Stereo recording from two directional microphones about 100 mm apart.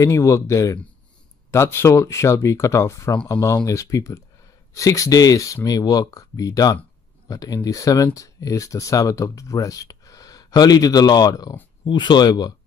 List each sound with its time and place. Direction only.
0.0 s speech: 30° left (ahead or behind)
11.8 s speech: 50° left (ahead or behind)